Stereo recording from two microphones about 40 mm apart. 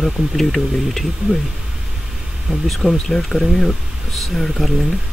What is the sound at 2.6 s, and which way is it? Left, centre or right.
Speech, centre.